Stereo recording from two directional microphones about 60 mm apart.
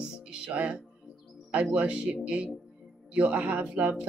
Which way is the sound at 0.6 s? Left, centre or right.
Centre.